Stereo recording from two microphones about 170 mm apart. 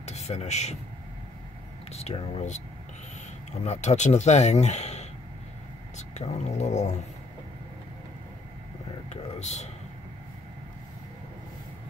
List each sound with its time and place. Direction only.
0.0 s speech: 40° left (ahead or behind)
1.9 s speech: 40° left (ahead or behind)
3.6 s speech: 40° left (ahead or behind)
9.1 s speech: 40° left (ahead or behind)